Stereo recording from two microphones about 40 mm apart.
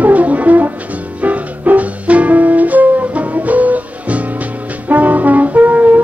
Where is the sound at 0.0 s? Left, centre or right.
Right.